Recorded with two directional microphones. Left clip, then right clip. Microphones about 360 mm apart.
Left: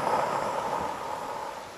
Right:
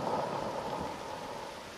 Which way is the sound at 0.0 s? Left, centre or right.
Left.